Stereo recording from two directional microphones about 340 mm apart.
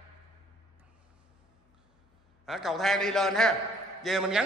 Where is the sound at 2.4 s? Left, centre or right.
Centre.